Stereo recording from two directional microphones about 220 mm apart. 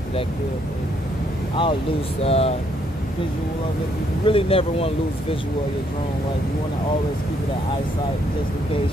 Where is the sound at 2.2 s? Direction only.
25° left (ahead or behind).